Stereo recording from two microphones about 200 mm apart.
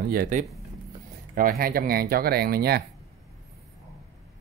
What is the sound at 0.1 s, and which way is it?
Speech, 45° right (ahead or behind).